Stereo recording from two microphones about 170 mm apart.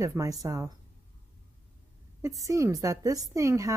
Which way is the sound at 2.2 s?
20° right (ahead or behind).